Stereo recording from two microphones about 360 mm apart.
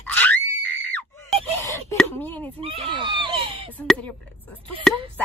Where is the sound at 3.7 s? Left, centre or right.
Centre.